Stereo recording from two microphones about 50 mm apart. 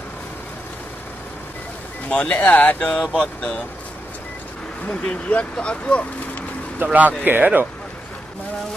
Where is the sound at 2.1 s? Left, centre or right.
Left.